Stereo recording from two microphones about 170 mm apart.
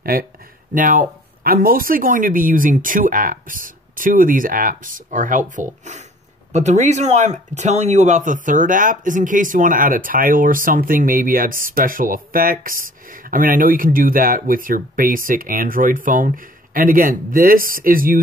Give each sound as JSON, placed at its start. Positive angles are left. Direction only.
{"t": 0.0, "sound": "speech", "side_deg": -60}